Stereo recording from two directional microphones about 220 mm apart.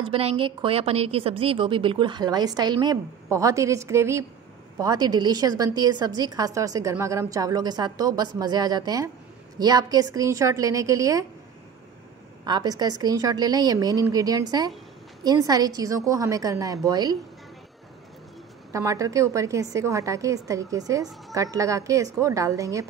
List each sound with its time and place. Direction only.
0.0 s a woman's voice: 25° right (ahead or behind)
12.4 s a woman's voice: 20° right (ahead or behind)
18.7 s a woman's voice: 15° right (ahead or behind)